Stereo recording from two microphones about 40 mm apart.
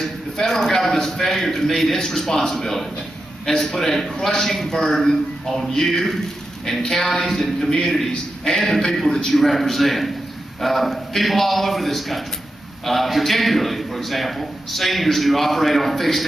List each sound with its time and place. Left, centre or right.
0.0 s a man's voice: centre